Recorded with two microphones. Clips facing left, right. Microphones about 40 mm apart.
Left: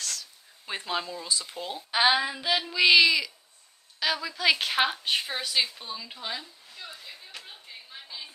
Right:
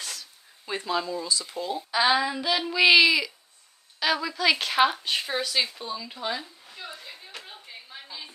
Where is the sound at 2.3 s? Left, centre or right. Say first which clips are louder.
Right 1 dB; centre.